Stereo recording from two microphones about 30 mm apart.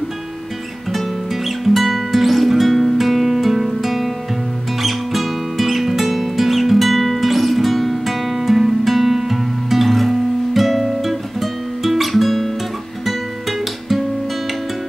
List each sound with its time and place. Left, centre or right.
0.9 s music: centre